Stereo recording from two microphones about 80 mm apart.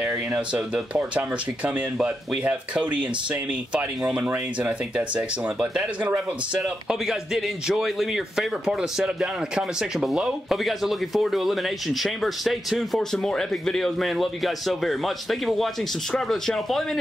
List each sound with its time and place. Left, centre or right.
0.3 s speech: centre
4.1 s speech: centre